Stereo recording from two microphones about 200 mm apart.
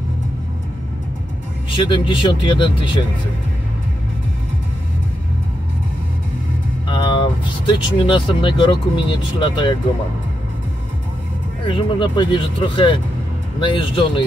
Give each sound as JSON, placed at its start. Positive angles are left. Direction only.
{"t": 1.8, "sound": "speech", "side_deg": 25}
{"t": 6.9, "sound": "speech", "side_deg": 25}
{"t": 11.6, "sound": "speech", "side_deg": 25}